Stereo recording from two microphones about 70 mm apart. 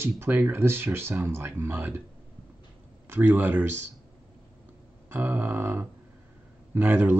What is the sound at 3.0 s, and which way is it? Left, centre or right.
Speech, right.